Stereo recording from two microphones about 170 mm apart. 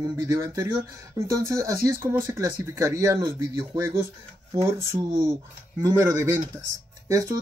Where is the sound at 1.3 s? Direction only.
20° right (ahead or behind).